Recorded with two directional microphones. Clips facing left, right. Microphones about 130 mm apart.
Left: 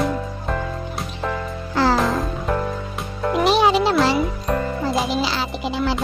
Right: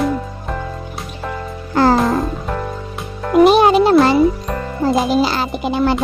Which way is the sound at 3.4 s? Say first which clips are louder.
Right 6 dB; 50° right (ahead or behind).